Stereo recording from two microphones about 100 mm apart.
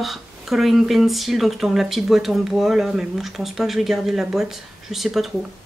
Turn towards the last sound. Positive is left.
turn(degrees=0)  # may be behind; listen again after turning